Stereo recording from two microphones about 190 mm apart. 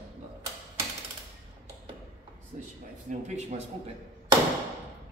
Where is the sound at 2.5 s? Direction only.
40° right (ahead or behind).